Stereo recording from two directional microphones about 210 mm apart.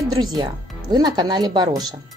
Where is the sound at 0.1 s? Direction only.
20° right (ahead or behind).